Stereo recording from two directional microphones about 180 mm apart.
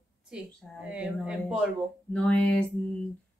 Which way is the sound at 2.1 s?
5° left (ahead or behind).